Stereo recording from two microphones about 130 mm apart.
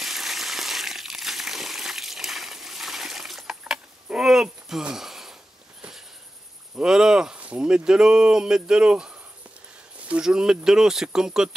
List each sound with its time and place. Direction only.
0.0 s a sound: centre (ahead or behind)
5.8 s sniff: 5° right (ahead or behind)
6.8 s speech: 5° right (ahead or behind)